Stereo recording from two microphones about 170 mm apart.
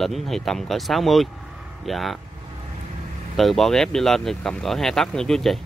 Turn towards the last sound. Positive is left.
turn(degrees=0)  # may be behind; listen again after turning